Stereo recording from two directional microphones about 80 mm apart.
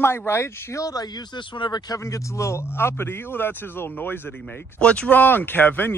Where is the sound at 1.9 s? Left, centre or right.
Left.